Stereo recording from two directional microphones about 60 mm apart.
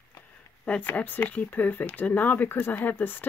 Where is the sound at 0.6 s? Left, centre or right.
Left.